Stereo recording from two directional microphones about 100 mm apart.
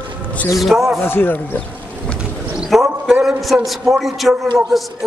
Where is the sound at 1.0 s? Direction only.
20° left (ahead or behind).